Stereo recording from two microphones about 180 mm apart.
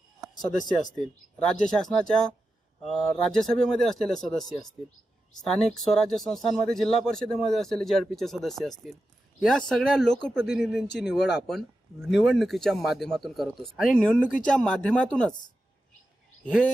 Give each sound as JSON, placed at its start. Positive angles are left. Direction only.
{"t": 0.5, "sound": "speech", "side_deg": 45}
{"t": 0.9, "sound": "speech", "side_deg": 0}